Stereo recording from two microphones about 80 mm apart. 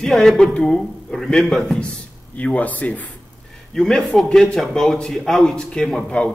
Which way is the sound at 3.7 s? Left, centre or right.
Centre.